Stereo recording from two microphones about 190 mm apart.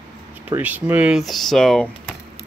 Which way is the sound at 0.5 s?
10° right (ahead or behind).